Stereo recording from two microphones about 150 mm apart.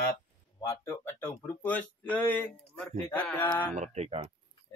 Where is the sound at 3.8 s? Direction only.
45° right (ahead or behind).